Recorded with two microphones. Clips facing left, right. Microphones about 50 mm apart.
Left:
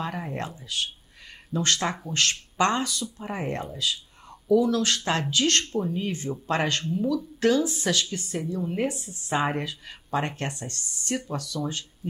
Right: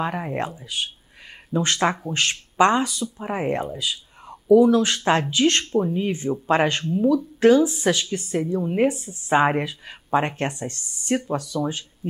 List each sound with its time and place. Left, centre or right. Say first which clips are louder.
0.0 s a woman's voice: right 6 dB; right